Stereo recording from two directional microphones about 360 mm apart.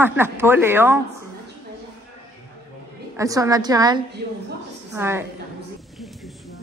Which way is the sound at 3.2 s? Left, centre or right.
Centre.